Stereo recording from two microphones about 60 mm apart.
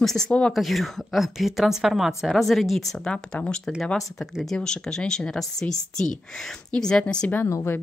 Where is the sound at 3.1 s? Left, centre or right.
Left.